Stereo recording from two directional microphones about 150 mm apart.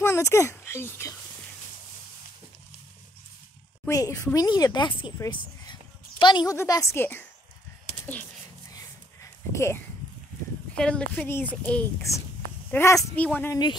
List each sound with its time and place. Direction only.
0.0 s speech: 15° left (ahead or behind)
3.8 s speech: 20° left (ahead or behind)
5.3 s a sound: 30° left (ahead or behind)
6.5 s speech: 20° left (ahead or behind)
8.7 s a sound: 20° left (ahead or behind)
10.7 s speech: 5° left (ahead or behind)